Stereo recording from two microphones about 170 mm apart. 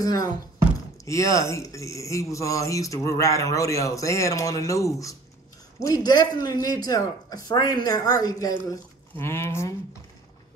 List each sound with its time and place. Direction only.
0.0 s speech: 20° left (ahead or behind)